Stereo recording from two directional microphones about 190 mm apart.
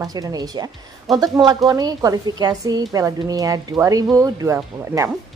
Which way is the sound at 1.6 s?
20° right (ahead or behind).